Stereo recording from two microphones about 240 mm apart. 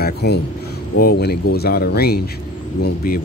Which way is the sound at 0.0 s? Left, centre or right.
Left.